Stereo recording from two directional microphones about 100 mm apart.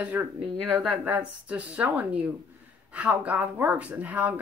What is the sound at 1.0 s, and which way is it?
Speech, 15° right (ahead or behind).